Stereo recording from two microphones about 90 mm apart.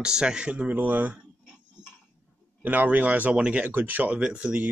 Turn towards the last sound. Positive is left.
turn(degrees=-15)  # may be behind; listen again after turning